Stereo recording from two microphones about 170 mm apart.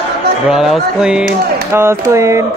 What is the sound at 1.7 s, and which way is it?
Speech, 15° right (ahead or behind).